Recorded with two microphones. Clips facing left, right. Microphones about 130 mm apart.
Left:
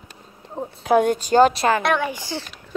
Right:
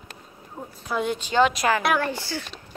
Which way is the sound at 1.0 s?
45° left (ahead or behind).